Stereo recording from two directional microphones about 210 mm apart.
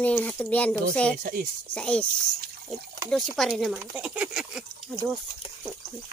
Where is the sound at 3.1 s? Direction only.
Centre (ahead or behind).